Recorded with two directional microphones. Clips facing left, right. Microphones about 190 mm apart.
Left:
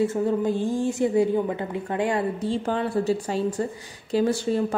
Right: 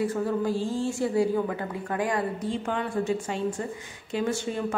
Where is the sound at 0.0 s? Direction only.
25° left (ahead or behind).